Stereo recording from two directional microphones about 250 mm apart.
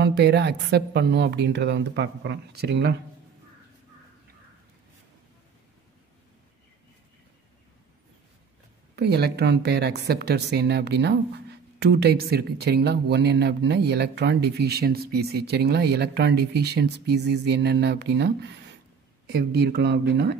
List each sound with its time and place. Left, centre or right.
0.0 s speech: right
8.9 s a woman's voice: right